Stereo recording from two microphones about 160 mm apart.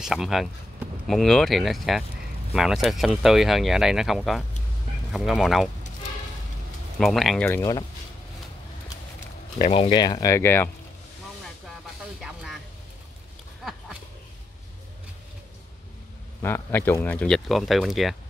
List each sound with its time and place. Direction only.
0.0 s speech: 5° right (ahead or behind)
7.0 s speech: centre (ahead or behind)
7.4 s speech: 15° left (ahead or behind)
9.6 s speech: 45° left (ahead or behind)
9.8 s speech: 25° left (ahead or behind)
16.4 s speech: 15° left (ahead or behind)